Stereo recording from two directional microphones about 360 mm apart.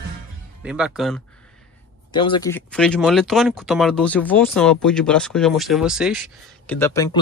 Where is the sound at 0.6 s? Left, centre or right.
Centre.